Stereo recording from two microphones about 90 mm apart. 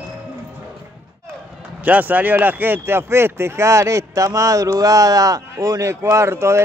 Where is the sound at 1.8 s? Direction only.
20° right (ahead or behind).